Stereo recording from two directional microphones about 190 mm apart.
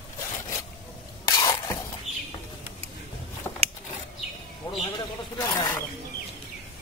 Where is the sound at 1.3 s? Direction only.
20° left (ahead or behind).